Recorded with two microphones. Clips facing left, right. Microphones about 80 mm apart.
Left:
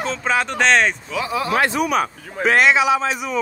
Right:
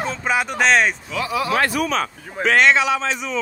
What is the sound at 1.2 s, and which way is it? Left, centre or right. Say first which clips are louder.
Speech: even; left.